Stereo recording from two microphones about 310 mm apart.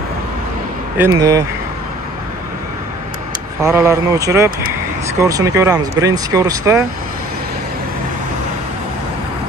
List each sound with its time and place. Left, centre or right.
0.9 s speech: centre
3.6 s speech: centre